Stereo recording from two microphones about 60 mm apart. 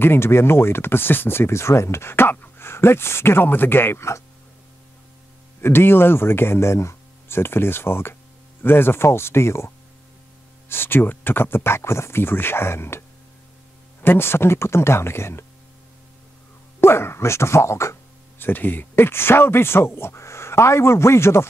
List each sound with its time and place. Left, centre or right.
0.0 s speech: left
5.6 s speech: left
10.7 s speech: left
14.0 s speech: left
16.8 s speech: left
18.4 s speech: left